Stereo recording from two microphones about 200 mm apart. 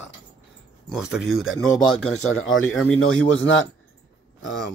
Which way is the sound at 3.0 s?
75° left (ahead or behind).